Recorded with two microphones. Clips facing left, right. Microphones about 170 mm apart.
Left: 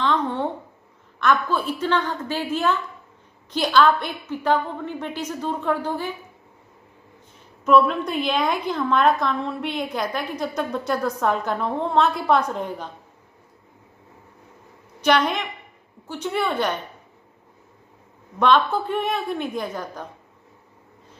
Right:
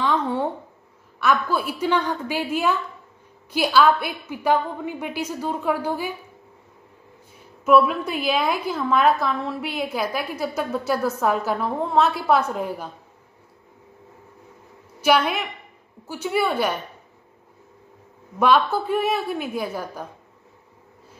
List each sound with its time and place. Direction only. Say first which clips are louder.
0.0 s a sound: even; 10° right (ahead or behind)
1.2 s a woman's voice: even; 10° right (ahead or behind)
7.6 s a woman's voice: even; 5° right (ahead or behind)
15.0 s a woman's voice: even; 5° right (ahead or behind)
18.4 s a woman's voice: even; 5° right (ahead or behind)